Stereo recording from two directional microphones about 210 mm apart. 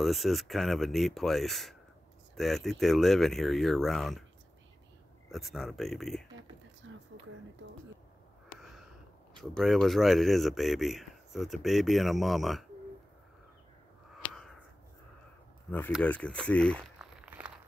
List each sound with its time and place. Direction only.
0.0 s speech: centre (ahead or behind)
5.3 s speech: centre (ahead or behind)
6.8 s a sound: 65° right (ahead or behind)
8.5 s a sound: centre (ahead or behind)
9.4 s speech: centre (ahead or behind)
15.9 s speech: 5° left (ahead or behind)